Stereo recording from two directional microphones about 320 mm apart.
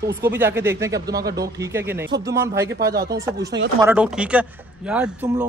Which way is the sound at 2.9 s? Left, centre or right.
Right.